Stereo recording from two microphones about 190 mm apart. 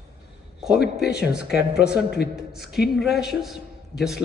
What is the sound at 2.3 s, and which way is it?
A man's voice, centre (ahead or behind).